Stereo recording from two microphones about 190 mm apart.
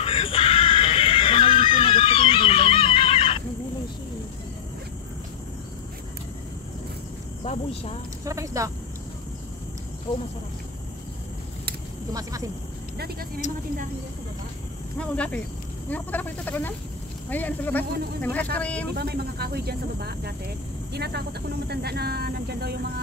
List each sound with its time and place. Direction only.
0.0 s neigh: 30° left (ahead or behind)
7.4 s speech: 30° left (ahead or behind)
8.3 s speech: 15° right (ahead or behind)
12.1 s speech: 20° right (ahead or behind)
12.9 s speech: 55° right (ahead or behind)
15.0 s speech: 5° left (ahead or behind)
18.9 s speech: 55° right (ahead or behind)